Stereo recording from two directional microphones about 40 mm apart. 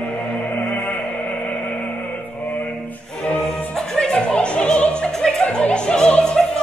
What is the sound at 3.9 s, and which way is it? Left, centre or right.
Opera, left.